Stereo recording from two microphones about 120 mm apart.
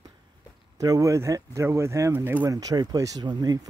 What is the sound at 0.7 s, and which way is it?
Speech, 30° right (ahead or behind).